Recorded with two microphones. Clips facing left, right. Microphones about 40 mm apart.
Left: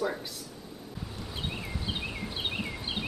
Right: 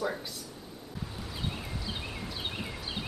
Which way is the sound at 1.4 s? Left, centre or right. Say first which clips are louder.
Left 2 dB; centre.